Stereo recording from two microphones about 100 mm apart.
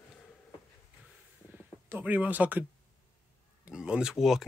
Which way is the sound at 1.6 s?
20° right (ahead or behind).